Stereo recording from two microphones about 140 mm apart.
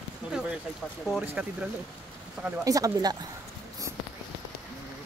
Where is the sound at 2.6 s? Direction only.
25° right (ahead or behind).